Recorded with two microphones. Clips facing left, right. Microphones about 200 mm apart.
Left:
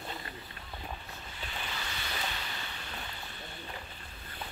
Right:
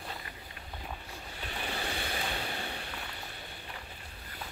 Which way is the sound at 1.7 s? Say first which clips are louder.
Right 5 dB; 55° right (ahead or behind).